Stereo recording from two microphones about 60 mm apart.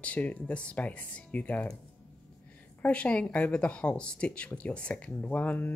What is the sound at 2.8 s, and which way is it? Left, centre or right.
Speech, centre.